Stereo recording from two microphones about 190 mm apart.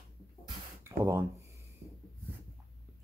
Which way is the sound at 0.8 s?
10° right (ahead or behind).